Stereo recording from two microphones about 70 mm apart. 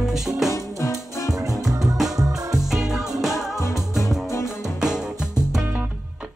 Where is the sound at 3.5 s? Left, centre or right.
Left.